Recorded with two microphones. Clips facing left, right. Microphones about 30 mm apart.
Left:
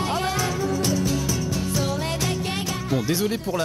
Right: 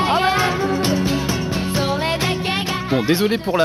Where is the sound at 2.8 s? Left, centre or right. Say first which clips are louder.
Right 6 dB; right.